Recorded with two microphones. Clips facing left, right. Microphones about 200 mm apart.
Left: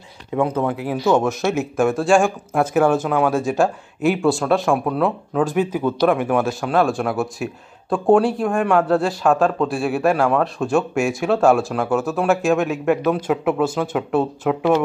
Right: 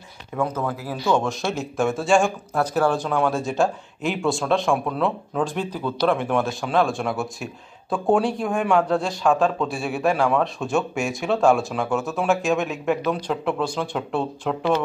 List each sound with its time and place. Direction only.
0.6 s speech: 20° left (ahead or behind)
1.4 s speech: 5° left (ahead or behind)